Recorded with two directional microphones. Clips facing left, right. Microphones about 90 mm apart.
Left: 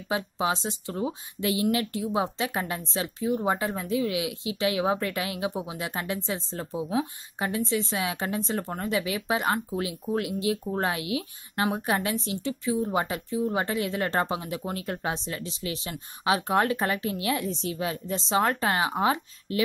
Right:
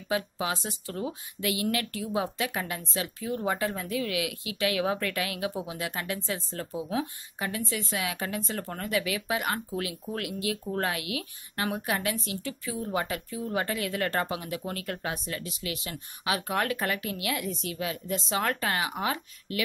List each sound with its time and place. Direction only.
0.1 s a woman's voice: 25° left (ahead or behind)